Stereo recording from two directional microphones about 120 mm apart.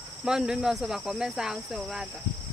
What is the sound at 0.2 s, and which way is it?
Speech, 5° right (ahead or behind).